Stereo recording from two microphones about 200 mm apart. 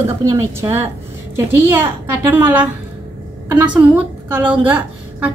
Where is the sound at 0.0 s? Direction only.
15° right (ahead or behind).